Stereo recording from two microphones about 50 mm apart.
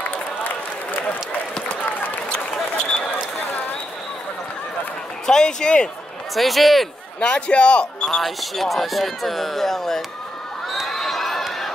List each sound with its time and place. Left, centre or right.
5.2 s a man's voice: centre
6.3 s speech: centre
7.2 s speech: centre
8.1 s speech: centre
10.7 s crowd: centre